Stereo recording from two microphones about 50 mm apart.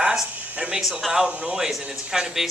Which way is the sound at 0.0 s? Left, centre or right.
Centre.